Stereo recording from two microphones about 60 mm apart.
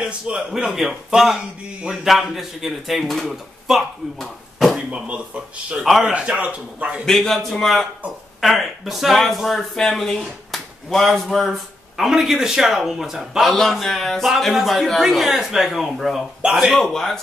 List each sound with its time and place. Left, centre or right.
0.5 s speech: centre
4.7 s speech: centre
5.9 s speech: centre
6.1 s speech: right
7.1 s speech: centre
16.7 s a man's voice: centre